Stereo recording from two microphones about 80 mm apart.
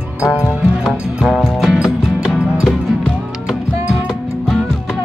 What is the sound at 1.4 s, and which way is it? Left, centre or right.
Music, centre.